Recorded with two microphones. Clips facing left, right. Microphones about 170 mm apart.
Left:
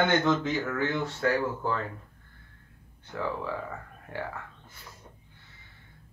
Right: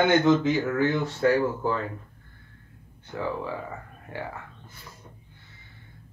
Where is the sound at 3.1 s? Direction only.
10° right (ahead or behind).